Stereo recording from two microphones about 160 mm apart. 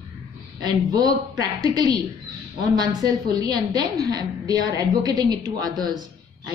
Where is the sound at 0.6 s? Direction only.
25° right (ahead or behind).